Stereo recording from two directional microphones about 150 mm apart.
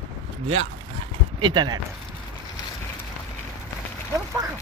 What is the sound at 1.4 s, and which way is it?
Speech, 30° right (ahead or behind).